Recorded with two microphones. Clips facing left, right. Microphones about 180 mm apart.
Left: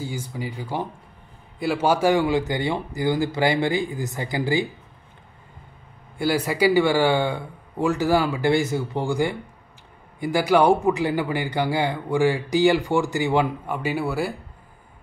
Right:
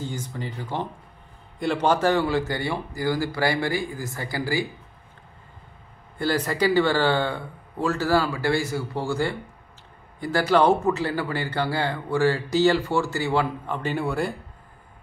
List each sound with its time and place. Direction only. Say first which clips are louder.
0.0 s speech: left 2 dB; 10° left (ahead or behind)
6.1 s speech: left 2 dB; 10° left (ahead or behind)